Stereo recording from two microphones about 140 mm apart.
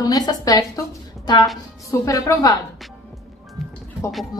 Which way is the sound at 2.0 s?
25° left (ahead or behind).